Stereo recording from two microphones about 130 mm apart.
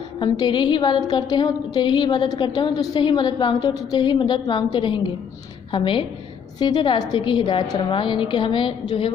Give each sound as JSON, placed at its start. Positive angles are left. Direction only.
{"t": 0.2, "sound": "a woman's voice", "side_deg": 35}